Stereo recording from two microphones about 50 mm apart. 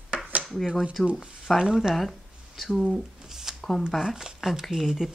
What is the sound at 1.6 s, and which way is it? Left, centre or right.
Speech, centre.